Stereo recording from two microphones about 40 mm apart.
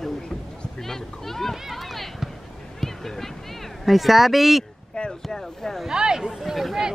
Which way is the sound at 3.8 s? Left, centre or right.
Centre.